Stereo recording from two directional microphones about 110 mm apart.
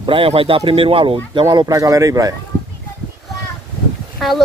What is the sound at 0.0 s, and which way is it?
Speech, 55° right (ahead or behind).